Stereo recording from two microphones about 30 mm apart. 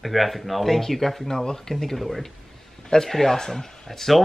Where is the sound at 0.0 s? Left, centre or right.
Centre.